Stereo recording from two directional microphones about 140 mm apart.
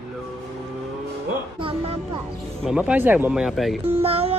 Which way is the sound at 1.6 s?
40° right (ahead or behind).